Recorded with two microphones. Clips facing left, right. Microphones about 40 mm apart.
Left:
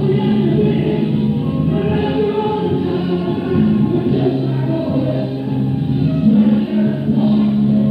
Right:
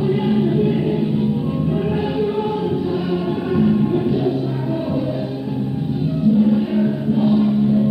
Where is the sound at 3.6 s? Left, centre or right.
Centre.